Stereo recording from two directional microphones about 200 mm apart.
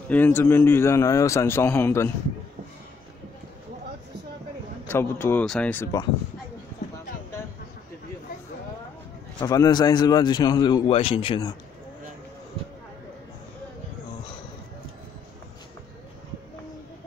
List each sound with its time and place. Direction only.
0.1 s a man's voice: 10° left (ahead or behind)
4.8 s a man's voice: 10° left (ahead or behind)
9.4 s a man's voice: 15° left (ahead or behind)